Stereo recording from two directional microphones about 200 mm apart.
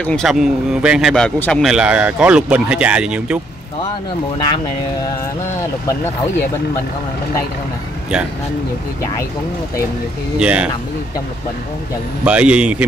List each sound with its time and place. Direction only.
0.0 s speech: 5° left (ahead or behind)
10.4 s speech: 5° right (ahead or behind)
12.3 s speech: 5° right (ahead or behind)